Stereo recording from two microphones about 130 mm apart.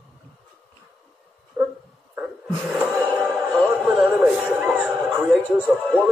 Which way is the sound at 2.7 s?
Centre (ahead or behind).